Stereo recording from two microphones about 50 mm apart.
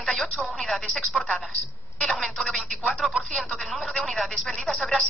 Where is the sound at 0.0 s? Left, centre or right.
Centre.